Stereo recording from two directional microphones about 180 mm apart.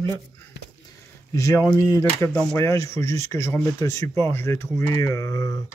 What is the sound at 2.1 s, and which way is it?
Speech, 10° left (ahead or behind).